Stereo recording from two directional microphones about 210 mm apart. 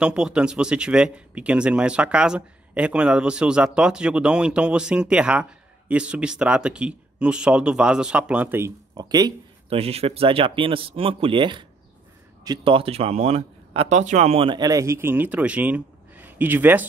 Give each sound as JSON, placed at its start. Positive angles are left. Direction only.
{"t": 0.0, "sound": "speech", "side_deg": -5}